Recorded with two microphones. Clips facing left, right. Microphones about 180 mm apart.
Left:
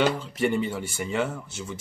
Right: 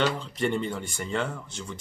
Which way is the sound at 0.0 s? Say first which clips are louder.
Left 3 dB; 5° left (ahead or behind).